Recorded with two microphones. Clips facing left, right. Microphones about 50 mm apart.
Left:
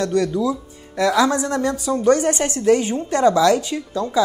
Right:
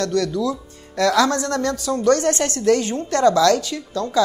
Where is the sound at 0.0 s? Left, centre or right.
Left.